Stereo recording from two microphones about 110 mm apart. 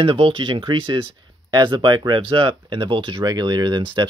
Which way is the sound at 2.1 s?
55° right (ahead or behind).